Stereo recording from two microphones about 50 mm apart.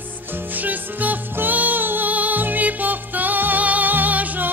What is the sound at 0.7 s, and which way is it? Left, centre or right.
Music, right.